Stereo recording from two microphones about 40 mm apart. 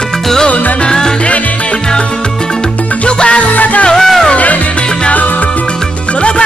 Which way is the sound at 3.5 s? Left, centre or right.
Left.